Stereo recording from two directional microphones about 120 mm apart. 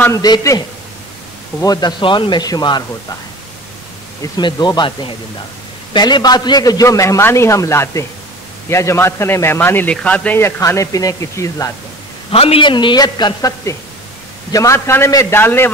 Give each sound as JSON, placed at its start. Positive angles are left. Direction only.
{"t": 0.1, "sound": "a man's voice", "side_deg": 30}
{"t": 4.2, "sound": "a man's voice", "side_deg": 40}
{"t": 10.6, "sound": "a man's voice", "side_deg": 25}
{"t": 12.3, "sound": "a man's voice", "side_deg": 55}